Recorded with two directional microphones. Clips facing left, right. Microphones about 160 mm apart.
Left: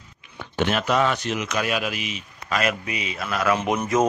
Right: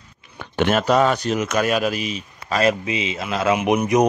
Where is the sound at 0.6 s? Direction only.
45° right (ahead or behind).